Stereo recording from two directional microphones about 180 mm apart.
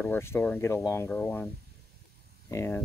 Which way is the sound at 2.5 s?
10° left (ahead or behind).